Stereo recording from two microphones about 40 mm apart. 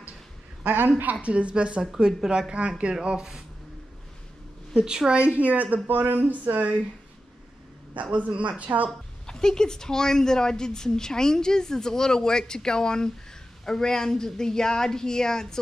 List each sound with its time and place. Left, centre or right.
0.7 s speech: right
1.2 s a woman's voice: right
4.7 s a woman's voice: centre; by 5.8 s right
5.9 s speech: right
8.0 s a woman's voice: right
9.2 s a woman's voice: centre